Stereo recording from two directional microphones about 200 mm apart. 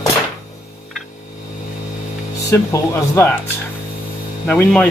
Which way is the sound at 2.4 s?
15° left (ahead or behind).